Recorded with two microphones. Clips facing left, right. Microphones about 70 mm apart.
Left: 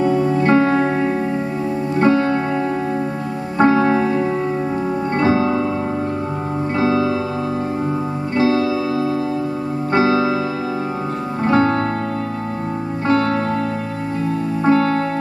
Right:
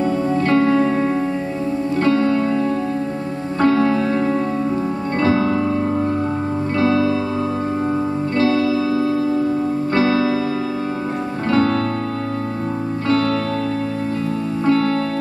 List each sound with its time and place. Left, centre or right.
0.0 s music: left
3.5 s music: left
5.2 s music: left
6.8 s music: left
8.4 s music: left
9.9 s keyboard: left
11.5 s music: left
13.1 s music: left
14.6 s music: left